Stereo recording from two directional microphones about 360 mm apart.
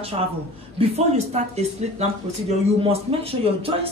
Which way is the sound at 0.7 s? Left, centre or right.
Centre.